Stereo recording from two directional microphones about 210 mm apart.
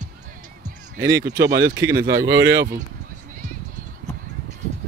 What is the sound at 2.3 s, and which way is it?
Speech, 50° right (ahead or behind).